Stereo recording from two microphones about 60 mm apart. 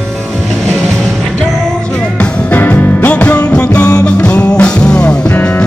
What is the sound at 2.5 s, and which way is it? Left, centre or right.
Music, left.